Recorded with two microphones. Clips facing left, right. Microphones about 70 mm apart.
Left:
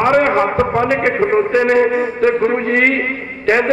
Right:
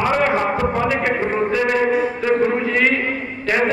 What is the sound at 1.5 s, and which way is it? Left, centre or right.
A man's voice, left.